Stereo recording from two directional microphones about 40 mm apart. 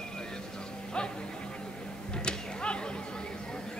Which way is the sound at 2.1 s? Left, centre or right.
Left.